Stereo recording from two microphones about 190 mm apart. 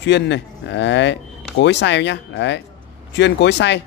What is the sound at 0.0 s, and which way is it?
Speech, 70° left (ahead or behind).